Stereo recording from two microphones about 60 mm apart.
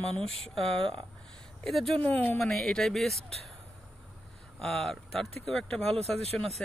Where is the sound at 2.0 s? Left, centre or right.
Left.